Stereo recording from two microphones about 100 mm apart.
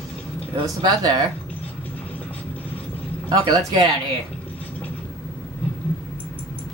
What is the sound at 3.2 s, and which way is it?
Speech, 45° right (ahead or behind).